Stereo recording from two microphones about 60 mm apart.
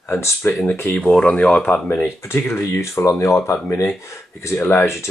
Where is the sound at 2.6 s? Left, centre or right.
Left.